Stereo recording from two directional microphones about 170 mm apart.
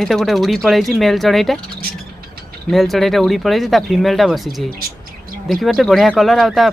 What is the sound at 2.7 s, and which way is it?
Speech, centre (ahead or behind).